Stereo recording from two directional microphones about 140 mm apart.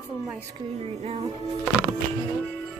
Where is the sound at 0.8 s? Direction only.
50° right (ahead or behind).